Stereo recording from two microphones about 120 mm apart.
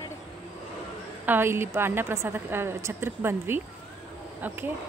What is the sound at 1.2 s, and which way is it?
A woman's voice, 20° right (ahead or behind).